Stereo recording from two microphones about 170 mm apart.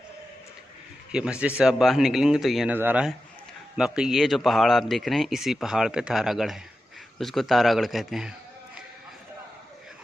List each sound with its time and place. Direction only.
1.1 s speech: 5° right (ahead or behind)